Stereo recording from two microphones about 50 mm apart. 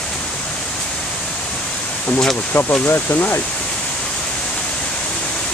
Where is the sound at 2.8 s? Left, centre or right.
Left.